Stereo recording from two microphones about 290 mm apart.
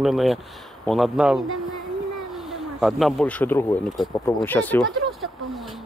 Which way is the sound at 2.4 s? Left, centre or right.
Centre.